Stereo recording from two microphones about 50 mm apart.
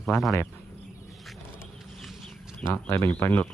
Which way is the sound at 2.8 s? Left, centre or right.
Left.